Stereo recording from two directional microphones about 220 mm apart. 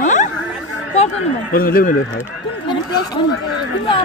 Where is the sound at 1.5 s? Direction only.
40° left (ahead or behind).